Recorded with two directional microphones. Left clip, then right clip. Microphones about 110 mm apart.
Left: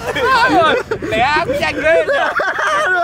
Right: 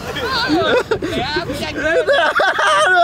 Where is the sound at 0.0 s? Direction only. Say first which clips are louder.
Left 7 dB; 30° left (ahead or behind).